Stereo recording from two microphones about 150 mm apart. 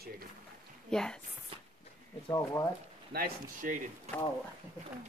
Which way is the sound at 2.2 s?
25° left (ahead or behind).